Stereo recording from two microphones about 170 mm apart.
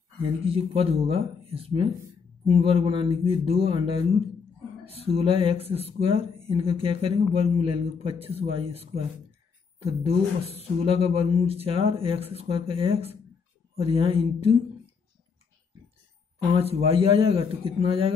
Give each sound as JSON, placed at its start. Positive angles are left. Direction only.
{"t": 0.2, "sound": "speech", "side_deg": -35}
{"t": 10.0, "sound": "speech", "side_deg": -35}
{"t": 16.4, "sound": "speech", "side_deg": -35}